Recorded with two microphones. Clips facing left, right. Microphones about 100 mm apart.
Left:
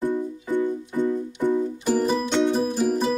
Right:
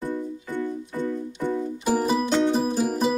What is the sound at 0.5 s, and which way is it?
Music, 15° left (ahead or behind).